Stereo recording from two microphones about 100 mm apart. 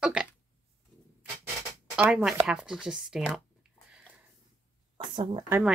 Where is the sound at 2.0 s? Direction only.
10° right (ahead or behind).